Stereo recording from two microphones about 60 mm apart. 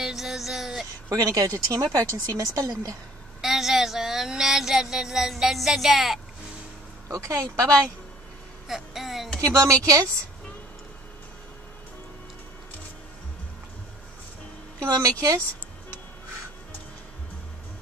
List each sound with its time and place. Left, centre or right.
0.0 s music: centre
1.1 s speech: right
3.3 s speech: centre
7.1 s speech: right
8.6 s a sound: centre
9.5 s speech: right
14.8 s a woman's voice: right